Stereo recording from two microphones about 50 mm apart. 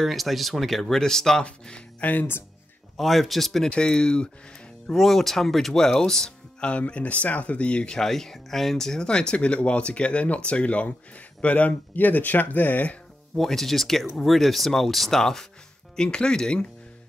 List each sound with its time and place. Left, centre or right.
0.0 s speech: centre
1.4 s speech: left
3.0 s speech: centre
3.7 s speech: centre
4.9 s speech: centre
6.7 s speech: left
8.0 s speech: centre; by 12.9 s left
13.4 s speech: centre
16.0 s speech: centre